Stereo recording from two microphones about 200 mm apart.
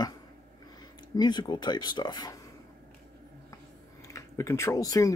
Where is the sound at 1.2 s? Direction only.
20° left (ahead or behind).